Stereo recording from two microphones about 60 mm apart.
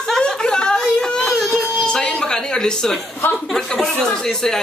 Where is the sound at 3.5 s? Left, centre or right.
Centre.